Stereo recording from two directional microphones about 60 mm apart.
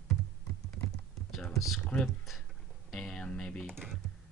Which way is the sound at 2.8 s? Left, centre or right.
Centre.